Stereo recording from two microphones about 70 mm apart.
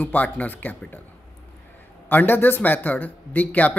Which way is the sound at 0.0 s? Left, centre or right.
Left.